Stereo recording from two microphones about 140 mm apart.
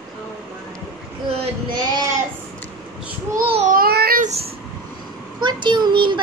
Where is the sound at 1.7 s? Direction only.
30° right (ahead or behind).